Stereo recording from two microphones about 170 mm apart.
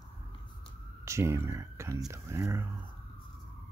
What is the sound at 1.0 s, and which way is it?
Speech, 15° right (ahead or behind).